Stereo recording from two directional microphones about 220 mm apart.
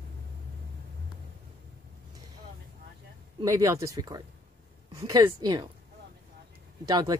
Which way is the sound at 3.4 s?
15° right (ahead or behind).